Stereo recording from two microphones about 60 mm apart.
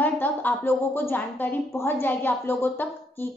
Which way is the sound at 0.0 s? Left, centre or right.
Left.